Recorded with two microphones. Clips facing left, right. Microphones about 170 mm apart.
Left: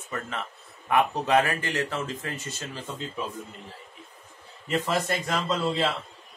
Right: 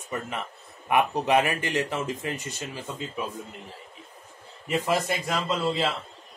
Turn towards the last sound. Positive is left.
turn(degrees=-5)  # may be behind; listen again after turning